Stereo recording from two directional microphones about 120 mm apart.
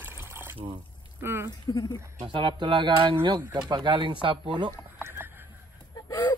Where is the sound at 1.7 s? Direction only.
35° left (ahead or behind).